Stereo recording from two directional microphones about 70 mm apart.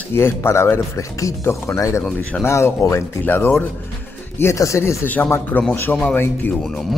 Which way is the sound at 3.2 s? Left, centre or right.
Left.